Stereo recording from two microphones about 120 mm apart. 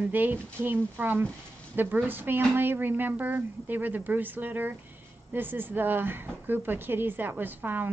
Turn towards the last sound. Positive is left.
turn(degrees=-15)  # may be behind; listen again after turning